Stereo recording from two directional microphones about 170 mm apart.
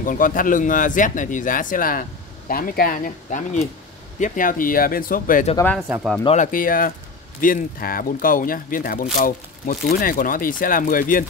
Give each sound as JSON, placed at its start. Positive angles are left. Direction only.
{"t": 0.0, "sound": "speech", "side_deg": 50}